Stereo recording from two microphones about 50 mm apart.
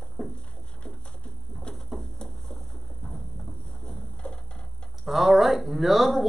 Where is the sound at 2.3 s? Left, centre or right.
Centre.